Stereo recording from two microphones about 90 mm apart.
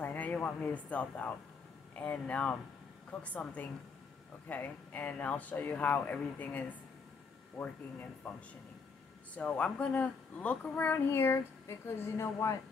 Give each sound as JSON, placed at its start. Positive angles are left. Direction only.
{"t": 0.0, "sound": "a child's voice", "side_deg": 15}
{"t": 9.3, "sound": "a child's voice", "side_deg": 10}